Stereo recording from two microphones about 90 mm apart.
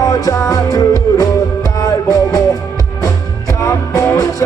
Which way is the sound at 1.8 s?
45° left (ahead or behind).